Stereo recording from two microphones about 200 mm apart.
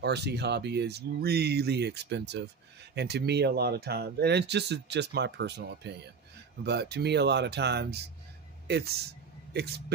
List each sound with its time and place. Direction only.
0.0 s speech: 55° right (ahead or behind)